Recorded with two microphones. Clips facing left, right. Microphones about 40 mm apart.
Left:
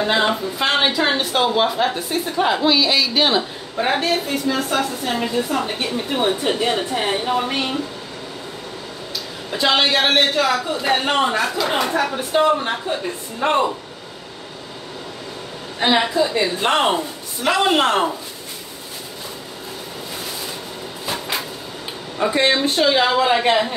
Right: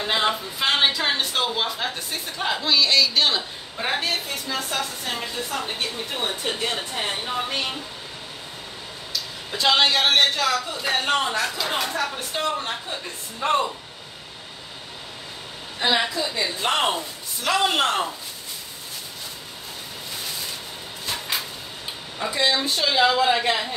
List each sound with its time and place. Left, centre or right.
0.0 s a woman's voice: centre
9.5 s a woman's voice: centre; by 12.3 s left
12.3 s speech: centre
15.8 s speech: left
16.3 s a man's voice: left
21.0 s a sound: centre
22.3 s speech: left
23.1 s a man's voice: left